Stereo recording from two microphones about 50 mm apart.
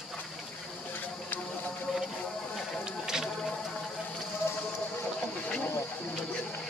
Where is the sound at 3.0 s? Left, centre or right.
Centre.